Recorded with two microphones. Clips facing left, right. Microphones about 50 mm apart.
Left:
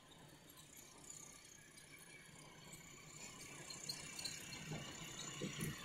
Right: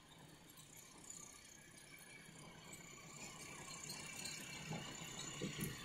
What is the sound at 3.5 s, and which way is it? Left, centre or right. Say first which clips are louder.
Squeal: right 1 dB; centre.